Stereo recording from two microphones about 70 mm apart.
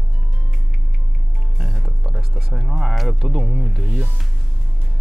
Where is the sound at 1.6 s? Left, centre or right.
Centre.